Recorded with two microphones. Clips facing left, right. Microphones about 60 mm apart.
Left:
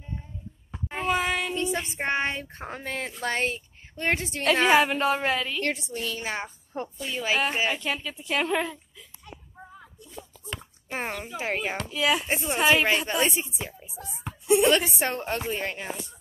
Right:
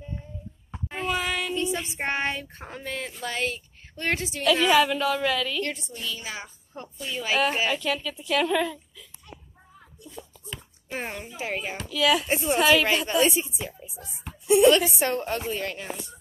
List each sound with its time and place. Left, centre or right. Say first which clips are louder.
0.9 s a sound: left 2 dB; left
1.5 s music: right 1 dB; left
2.0 s speech: even; left
2.7 s a woman's voice: even; left
3.9 s a woman's voice: left 1 dB; left
4.2 s a woman's voice: right 2 dB; left
6.1 s a woman's voice: left 5 dB; left
6.7 s speech: left 1 dB; left
7.3 s speech: right 4 dB; centre
10.9 s a woman's voice: left 2 dB; left
12.3 s speech: right 2 dB; centre
14.5 s a woman's voice: right 3 dB; left